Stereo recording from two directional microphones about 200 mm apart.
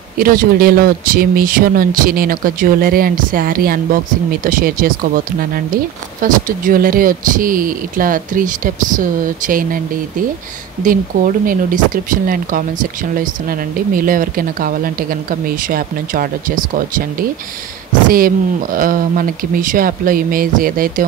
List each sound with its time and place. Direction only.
0.2 s speech: 45° right (ahead or behind)
11.4 s speech: 45° right (ahead or behind)